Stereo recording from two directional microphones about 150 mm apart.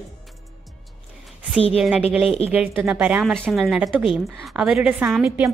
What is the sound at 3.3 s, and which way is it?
Speech, centre (ahead or behind).